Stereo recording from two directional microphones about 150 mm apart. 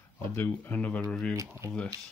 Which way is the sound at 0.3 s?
15° left (ahead or behind).